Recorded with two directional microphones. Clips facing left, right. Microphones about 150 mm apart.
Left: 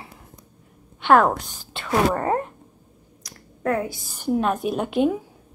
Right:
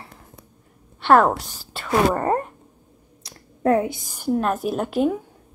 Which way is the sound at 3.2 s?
30° right (ahead or behind).